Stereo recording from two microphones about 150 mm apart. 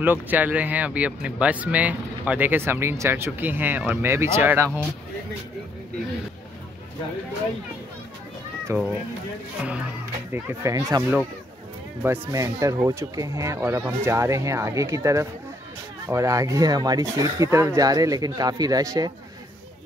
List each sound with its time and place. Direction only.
0.0 s speech: 10° right (ahead or behind)
8.7 s speech: 20° right (ahead or behind)
10.3 s speech: 20° right (ahead or behind)